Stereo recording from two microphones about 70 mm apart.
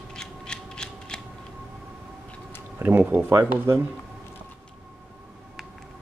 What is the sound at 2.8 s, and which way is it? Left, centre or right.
Speech, right.